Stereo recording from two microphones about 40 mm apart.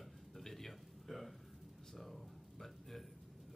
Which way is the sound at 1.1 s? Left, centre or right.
Centre.